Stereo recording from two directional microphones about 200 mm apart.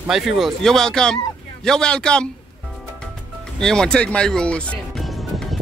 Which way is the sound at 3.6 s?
5° left (ahead or behind).